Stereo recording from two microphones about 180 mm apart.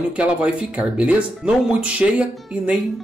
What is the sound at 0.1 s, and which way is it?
Speech, 5° right (ahead or behind).